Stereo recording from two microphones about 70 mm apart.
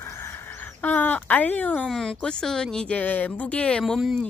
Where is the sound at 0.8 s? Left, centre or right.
Left.